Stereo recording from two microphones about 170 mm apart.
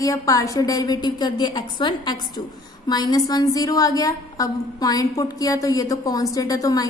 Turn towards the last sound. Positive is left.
turn(degrees=20)  # may be behind; listen again after turning